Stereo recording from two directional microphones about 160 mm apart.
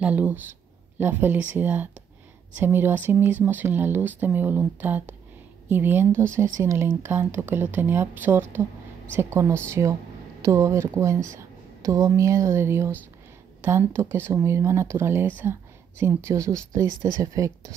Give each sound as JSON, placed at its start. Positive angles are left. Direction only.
{"t": 0.0, "sound": "speech", "side_deg": -10}